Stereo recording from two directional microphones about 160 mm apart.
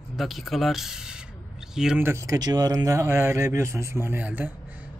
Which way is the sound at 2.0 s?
20° right (ahead or behind).